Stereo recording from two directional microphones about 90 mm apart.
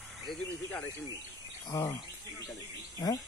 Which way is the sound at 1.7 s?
35° left (ahead or behind).